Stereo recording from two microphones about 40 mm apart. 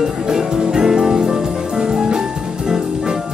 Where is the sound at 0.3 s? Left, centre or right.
Centre.